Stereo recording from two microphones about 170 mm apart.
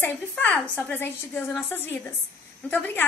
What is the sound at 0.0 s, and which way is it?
A woman's voice, 10° left (ahead or behind).